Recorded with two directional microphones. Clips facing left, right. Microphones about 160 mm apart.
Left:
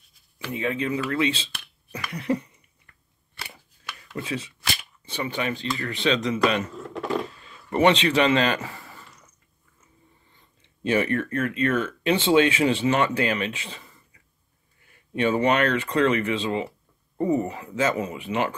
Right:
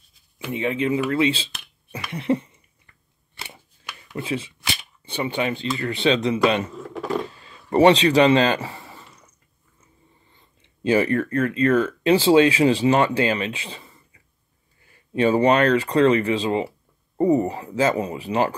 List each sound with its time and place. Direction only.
0.6 s speech: 25° right (ahead or behind)
3.3 s scissors: 25° right (ahead or behind)
4.2 s speech: 30° right (ahead or behind)
6.6 s vehicle: centre (ahead or behind)
7.7 s speech: 35° right (ahead or behind)
10.9 s speech: 35° right (ahead or behind)
15.1 s speech: 35° right (ahead or behind)